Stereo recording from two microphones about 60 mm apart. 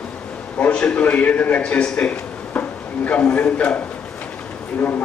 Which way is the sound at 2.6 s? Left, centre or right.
Left.